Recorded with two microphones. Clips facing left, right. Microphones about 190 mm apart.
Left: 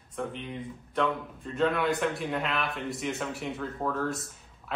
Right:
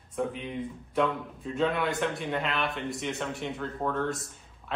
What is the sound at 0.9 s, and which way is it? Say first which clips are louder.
A man's voice: right 1 dB; centre (ahead or behind).